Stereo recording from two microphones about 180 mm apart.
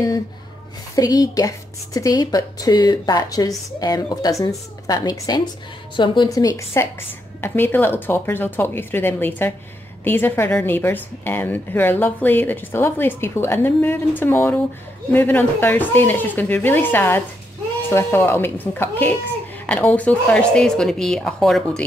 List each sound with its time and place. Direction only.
0.9 s a woman's voice: 20° left (ahead or behind); by 21.8 s centre (ahead or behind)